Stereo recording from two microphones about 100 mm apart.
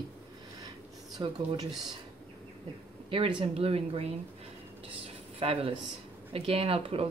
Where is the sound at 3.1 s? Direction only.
65° right (ahead or behind).